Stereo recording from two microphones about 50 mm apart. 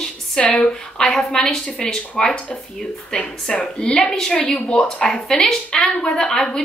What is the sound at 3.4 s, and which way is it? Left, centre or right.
A woman's voice, centre.